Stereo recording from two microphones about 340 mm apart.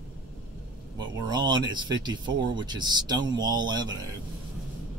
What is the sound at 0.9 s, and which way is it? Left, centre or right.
Speech, centre.